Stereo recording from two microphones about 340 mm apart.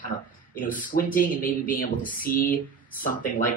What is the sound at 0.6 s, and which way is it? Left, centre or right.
Speech, left.